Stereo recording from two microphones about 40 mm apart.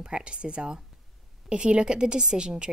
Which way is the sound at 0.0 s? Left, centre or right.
Right.